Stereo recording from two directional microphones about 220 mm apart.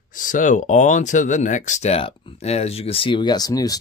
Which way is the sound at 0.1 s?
35° left (ahead or behind).